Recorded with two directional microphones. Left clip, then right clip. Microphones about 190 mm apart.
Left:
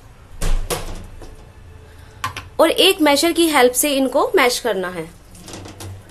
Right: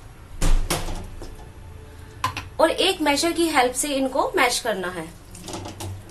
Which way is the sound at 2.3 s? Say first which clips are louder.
Left 5 dB; 50° left (ahead or behind).